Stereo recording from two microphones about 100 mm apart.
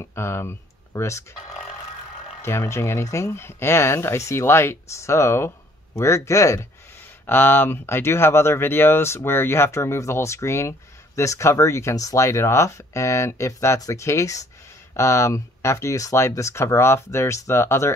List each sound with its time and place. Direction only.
0.0 s speech: 25° left (ahead or behind)
2.4 s speech: 25° left (ahead or behind)